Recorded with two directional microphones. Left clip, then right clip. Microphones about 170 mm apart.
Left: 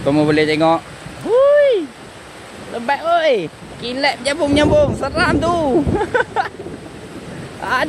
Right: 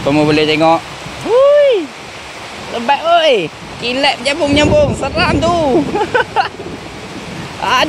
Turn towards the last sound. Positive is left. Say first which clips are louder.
# right 5 dB
turn(degrees=5)  # may be behind; listen again after turning